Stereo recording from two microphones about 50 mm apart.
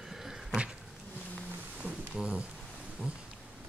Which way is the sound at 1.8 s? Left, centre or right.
Right.